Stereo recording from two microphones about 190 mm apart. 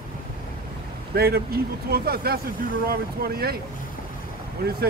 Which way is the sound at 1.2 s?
55° right (ahead or behind).